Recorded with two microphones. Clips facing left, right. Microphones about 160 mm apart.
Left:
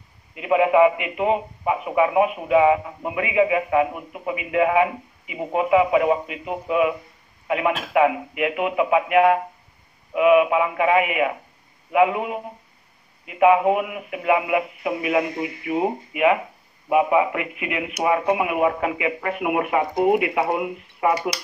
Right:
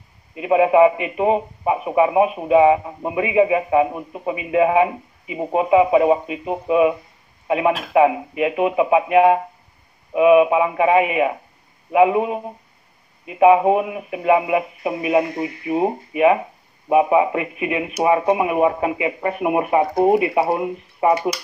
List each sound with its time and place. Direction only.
0.4 s a man's voice: 30° right (ahead or behind)